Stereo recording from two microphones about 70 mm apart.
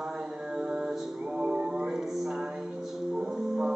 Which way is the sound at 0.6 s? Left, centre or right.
Centre.